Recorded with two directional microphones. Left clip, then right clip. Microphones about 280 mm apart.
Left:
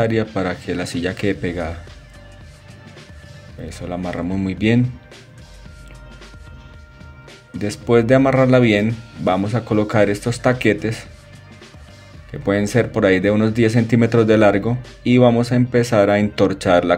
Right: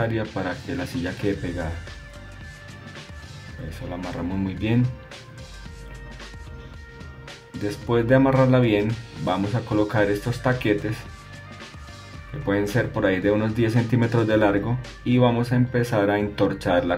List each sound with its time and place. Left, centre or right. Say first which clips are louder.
0.3 s speech: left 6 dB; centre
4.1 s speech: left 5 dB; centre
7.6 s speech: left 7 dB; centre
12.4 s speech: left 5 dB; centre